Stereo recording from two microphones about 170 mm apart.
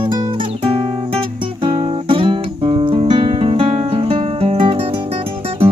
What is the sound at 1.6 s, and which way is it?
Music, 30° right (ahead or behind).